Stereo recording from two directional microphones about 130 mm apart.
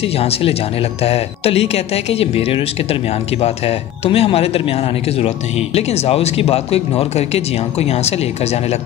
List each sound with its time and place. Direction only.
0.2 s speech: 50° left (ahead or behind)
5.8 s speech: 50° left (ahead or behind)